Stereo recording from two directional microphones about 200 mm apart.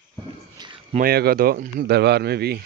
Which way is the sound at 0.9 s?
50° right (ahead or behind).